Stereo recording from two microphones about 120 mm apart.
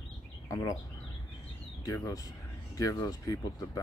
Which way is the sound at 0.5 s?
25° left (ahead or behind).